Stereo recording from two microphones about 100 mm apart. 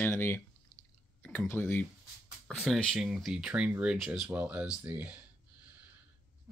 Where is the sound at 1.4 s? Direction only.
25° left (ahead or behind).